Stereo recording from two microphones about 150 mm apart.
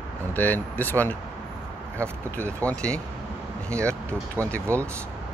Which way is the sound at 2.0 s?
15° right (ahead or behind).